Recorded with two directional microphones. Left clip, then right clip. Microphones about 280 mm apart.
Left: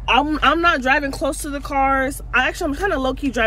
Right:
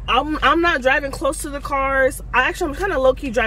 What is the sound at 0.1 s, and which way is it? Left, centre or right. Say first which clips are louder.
Speech: left 1 dB; centre.